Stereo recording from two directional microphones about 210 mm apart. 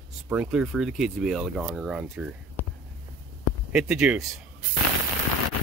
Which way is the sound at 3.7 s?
5° right (ahead or behind).